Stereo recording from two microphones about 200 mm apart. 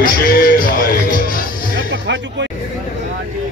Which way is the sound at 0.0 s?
50° left (ahead or behind).